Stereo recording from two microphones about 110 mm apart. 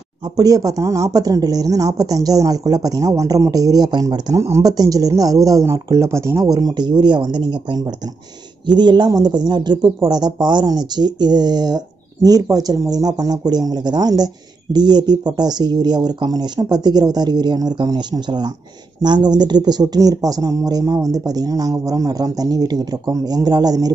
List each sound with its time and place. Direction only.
0.4 s speech: 35° right (ahead or behind)